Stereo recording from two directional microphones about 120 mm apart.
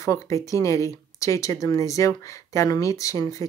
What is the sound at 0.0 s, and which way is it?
Speech, 25° left (ahead or behind).